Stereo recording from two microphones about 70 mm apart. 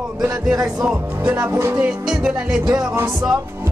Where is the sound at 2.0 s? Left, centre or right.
Centre.